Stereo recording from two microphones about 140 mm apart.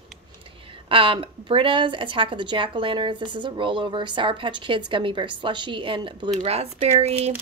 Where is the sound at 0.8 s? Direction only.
40° right (ahead or behind).